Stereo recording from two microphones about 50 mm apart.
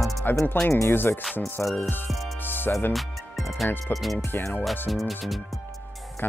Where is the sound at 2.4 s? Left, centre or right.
Left.